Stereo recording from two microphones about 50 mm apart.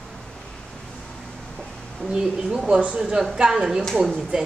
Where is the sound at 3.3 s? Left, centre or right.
Centre.